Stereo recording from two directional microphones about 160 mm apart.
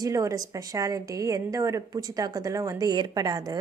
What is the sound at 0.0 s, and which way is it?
A woman's voice, 20° right (ahead or behind).